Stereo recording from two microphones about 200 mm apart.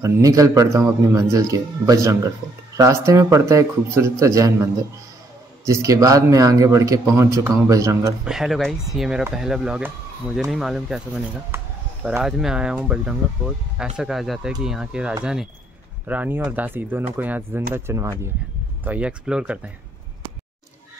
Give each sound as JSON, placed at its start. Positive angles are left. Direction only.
{"t": 0.0, "sound": "speech", "side_deg": -20}
{"t": 5.7, "sound": "speech", "side_deg": -15}
{"t": 8.3, "sound": "speech", "side_deg": 0}